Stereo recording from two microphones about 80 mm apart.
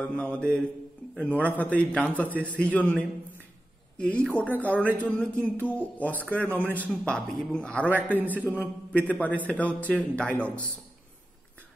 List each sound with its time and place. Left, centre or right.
0.0 s speech: centre
2.3 s a man's voice: centre
2.6 s speech: centre
7.1 s speech: centre